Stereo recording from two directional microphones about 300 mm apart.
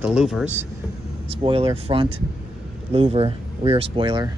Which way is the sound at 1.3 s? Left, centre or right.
Centre.